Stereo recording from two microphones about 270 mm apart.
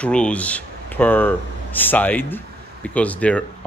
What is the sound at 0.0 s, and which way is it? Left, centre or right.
Speech, centre.